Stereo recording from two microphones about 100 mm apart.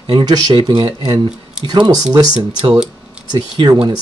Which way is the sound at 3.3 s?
45° right (ahead or behind).